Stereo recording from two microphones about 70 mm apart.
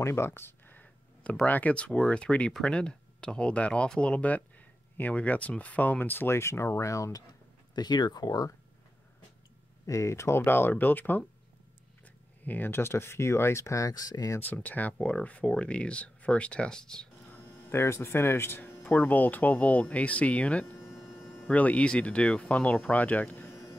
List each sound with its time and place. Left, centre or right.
0.0 s a sound: left
1.4 s speech: left
7.7 s speech: left
9.8 s speech: left
12.4 s speech: left
14.4 s speech: left
17.3 s speech: left